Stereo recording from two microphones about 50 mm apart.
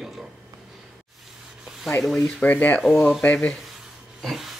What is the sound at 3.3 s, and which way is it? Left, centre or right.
Speech, left.